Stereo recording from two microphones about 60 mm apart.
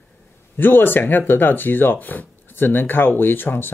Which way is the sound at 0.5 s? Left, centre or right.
Left.